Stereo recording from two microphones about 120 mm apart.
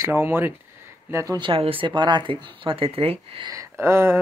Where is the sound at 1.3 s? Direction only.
40° right (ahead or behind).